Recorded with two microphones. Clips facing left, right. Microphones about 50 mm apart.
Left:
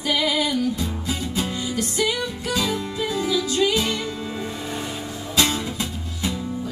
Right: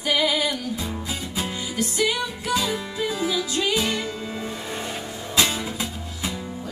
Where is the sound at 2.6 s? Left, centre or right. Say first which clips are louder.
Left 1 dB; right.